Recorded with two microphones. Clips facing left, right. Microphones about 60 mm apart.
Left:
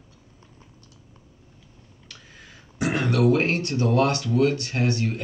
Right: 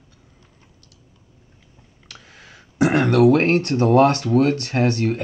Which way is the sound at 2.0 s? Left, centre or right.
Right.